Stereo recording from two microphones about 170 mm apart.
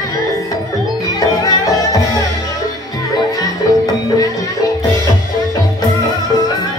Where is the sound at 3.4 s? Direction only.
20° left (ahead or behind).